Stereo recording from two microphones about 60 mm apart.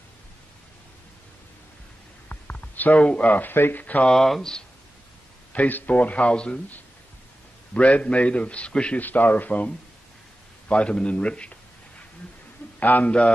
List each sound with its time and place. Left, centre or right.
2.2 s speech: left
3.8 s a man's voice: left
4.1 s speech: centre
5.5 s a man's voice: left
7.7 s a man's voice: left
9.0 s a man's voice: left
10.7 s a man's voice: centre
12.8 s a man's voice: left